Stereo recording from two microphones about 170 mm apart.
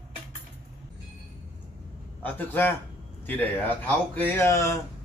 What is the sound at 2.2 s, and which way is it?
A man's voice, 10° left (ahead or behind).